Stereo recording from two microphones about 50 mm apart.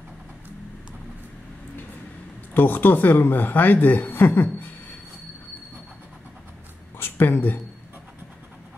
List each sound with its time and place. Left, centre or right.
2.5 s speech: left
7.0 s a woman's voice: left